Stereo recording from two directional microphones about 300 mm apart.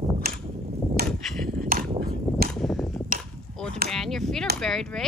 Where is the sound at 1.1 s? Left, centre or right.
Centre.